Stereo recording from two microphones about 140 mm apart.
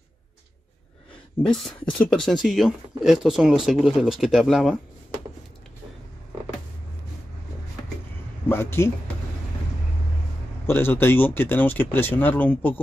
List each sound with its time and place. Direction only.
1.4 s speech: 5° left (ahead or behind)
8.5 s speech: 15° left (ahead or behind)
10.7 s speech: 15° left (ahead or behind)